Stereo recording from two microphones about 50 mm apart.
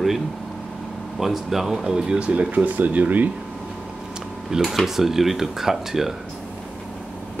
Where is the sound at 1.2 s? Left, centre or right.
Centre; by 2.4 s right.